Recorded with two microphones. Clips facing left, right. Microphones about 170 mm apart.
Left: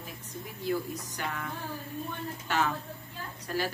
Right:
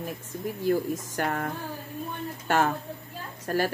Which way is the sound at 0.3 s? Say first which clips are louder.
Right 6 dB; 55° right (ahead or behind).